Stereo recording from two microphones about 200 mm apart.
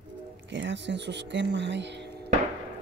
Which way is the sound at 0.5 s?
60° right (ahead or behind).